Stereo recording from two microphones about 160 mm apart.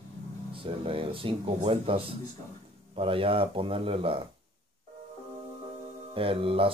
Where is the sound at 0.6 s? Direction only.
35° right (ahead or behind).